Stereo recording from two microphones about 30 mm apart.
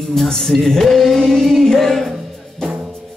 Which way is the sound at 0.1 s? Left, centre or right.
Centre.